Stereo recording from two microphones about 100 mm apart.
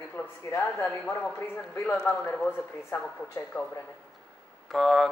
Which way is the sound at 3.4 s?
25° left (ahead or behind).